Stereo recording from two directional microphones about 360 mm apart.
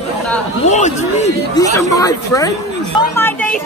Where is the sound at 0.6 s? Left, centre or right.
Centre.